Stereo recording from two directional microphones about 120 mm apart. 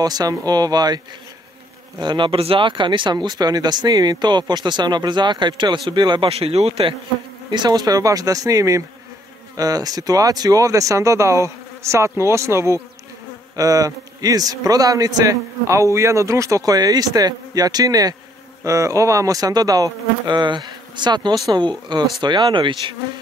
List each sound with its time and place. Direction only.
0.0 s a man's voice: 30° right (ahead or behind)
6.3 s speech: 55° right (ahead or behind)
7.5 s a man's voice: 35° right (ahead or behind)